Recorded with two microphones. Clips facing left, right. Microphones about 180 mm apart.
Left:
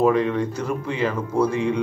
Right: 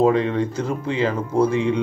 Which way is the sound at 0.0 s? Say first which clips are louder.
Right 1 dB; 25° right (ahead or behind).